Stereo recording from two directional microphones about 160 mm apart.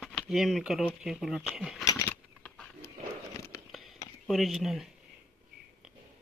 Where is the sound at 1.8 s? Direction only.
15° left (ahead or behind).